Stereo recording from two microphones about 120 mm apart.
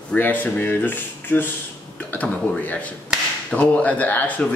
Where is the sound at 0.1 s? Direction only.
15° left (ahead or behind).